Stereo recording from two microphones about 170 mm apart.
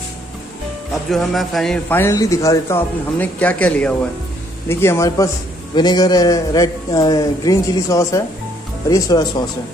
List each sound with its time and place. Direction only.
1.1 s a man's voice: centre (ahead or behind); by 9.4 s 25° left (ahead or behind)